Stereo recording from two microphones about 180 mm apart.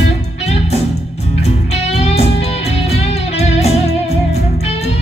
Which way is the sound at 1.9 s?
35° left (ahead or behind).